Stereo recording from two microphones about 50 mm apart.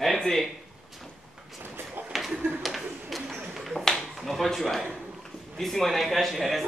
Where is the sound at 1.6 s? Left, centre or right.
Right.